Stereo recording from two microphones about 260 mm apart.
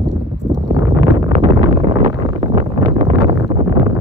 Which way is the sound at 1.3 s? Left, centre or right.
Right.